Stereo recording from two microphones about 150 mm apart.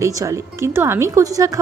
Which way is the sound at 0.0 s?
20° right (ahead or behind).